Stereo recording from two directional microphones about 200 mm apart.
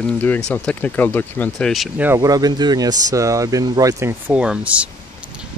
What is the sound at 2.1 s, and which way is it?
Speech, 20° right (ahead or behind).